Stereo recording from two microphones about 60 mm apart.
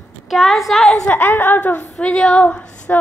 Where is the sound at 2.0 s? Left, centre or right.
Centre.